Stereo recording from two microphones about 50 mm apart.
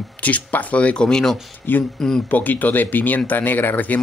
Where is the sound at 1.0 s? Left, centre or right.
Centre.